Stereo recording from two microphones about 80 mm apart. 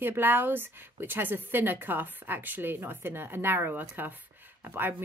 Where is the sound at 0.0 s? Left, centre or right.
Right.